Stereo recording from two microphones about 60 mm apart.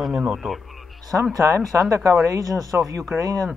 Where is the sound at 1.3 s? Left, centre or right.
Right.